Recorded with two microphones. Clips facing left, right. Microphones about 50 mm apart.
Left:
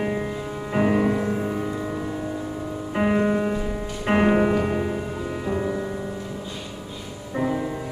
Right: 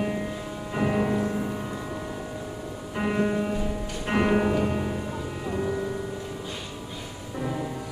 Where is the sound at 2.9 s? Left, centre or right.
Left.